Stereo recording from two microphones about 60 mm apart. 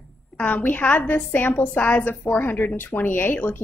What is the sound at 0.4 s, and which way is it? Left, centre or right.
A woman's voice, left.